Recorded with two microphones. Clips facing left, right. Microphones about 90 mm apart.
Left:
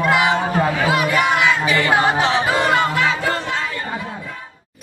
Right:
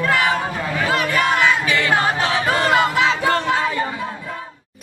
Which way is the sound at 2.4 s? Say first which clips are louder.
Even; 5° left (ahead or behind).